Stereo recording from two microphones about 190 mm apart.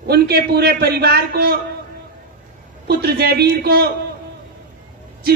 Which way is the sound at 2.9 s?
55° right (ahead or behind).